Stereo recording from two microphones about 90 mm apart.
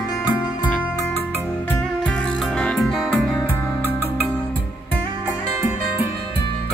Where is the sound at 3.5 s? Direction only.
20° left (ahead or behind).